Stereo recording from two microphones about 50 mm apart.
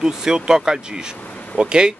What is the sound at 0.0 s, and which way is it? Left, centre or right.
Speech, centre.